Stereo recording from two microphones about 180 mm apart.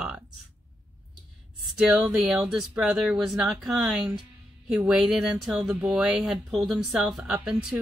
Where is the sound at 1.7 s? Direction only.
5° right (ahead or behind).